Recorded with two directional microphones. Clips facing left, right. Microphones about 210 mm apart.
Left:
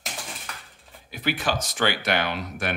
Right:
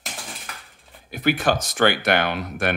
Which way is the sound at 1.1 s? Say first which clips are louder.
Right 6 dB; 50° right (ahead or behind).